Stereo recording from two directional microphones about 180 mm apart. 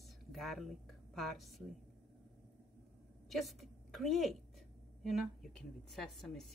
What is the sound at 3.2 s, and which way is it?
A woman's voice, centre (ahead or behind).